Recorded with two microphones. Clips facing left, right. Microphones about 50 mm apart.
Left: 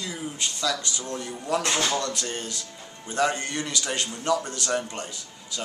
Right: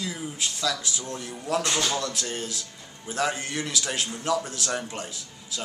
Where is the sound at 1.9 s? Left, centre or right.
Centre.